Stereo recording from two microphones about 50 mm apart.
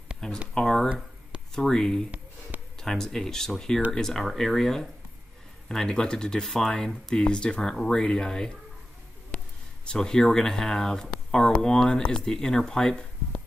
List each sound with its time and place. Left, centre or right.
0.2 s speech: centre
7.2 s speech: centre
9.3 s a sound: left
9.8 s speech: centre